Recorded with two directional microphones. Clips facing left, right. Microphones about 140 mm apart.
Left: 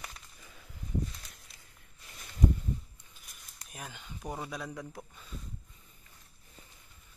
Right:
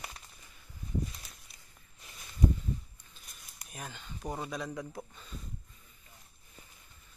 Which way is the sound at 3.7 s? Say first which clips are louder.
Right 1 dB; 5° left (ahead or behind).